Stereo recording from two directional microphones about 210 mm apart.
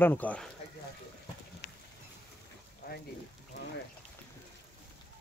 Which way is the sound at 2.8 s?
45° left (ahead or behind).